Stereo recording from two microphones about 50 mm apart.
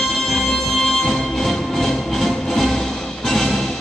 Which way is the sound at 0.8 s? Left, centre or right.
Centre.